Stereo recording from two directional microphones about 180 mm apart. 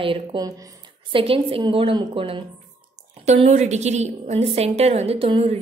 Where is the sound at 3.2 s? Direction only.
40° right (ahead or behind).